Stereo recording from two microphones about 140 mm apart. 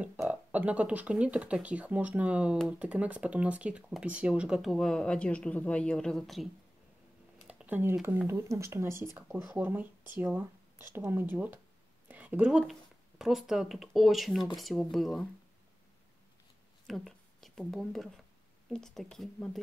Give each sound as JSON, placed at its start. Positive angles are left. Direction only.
{"t": 0.3, "sound": "speech", "side_deg": -10}
{"t": 7.4, "sound": "a woman's voice", "side_deg": -10}
{"t": 16.8, "sound": "speech", "side_deg": 0}